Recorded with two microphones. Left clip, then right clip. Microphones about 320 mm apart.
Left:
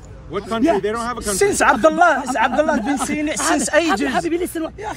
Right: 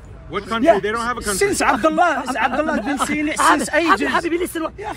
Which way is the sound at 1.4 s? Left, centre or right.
Left.